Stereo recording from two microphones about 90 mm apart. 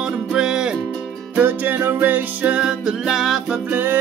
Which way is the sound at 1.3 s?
20° right (ahead or behind).